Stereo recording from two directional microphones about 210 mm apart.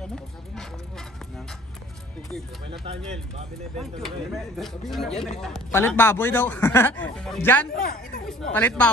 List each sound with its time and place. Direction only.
0.1 s a sound: centre (ahead or behind)
3.1 s speech: 30° right (ahead or behind)
4.6 s speech: centre (ahead or behind)
7.7 s speech: 45° left (ahead or behind)
8.3 s speech: 5° left (ahead or behind)